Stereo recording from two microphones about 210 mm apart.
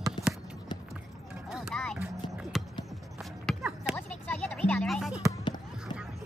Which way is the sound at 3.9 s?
5° left (ahead or behind).